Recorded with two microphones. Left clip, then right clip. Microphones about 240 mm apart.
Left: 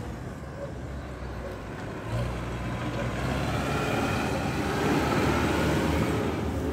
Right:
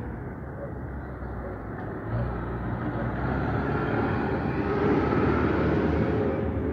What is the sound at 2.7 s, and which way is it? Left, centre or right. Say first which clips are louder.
Vehicle: even; left.